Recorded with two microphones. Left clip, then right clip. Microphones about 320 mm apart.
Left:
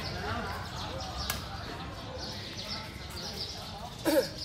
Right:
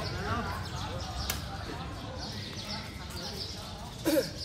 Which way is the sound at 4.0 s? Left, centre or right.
Centre.